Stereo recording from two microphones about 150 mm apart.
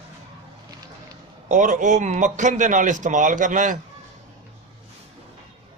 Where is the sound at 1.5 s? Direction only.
60° right (ahead or behind).